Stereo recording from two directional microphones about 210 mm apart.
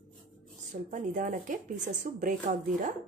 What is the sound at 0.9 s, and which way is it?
Speech, 35° right (ahead or behind).